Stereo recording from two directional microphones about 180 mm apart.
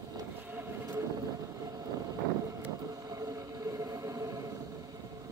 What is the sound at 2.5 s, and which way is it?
Vehicle, 20° right (ahead or behind).